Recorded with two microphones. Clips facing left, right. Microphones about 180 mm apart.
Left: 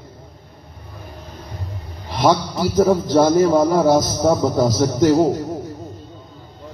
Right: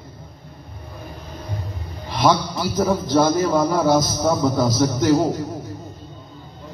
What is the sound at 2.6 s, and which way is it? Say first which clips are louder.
A man's voice: left 5 dB; 45° left (ahead or behind).